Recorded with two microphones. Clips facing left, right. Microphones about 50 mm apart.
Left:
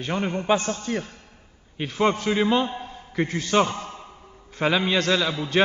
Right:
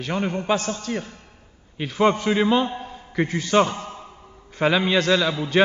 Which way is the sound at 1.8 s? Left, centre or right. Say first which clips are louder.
Right 3 dB; centre.